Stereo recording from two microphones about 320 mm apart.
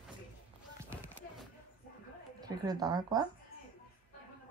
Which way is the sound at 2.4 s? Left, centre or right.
Centre.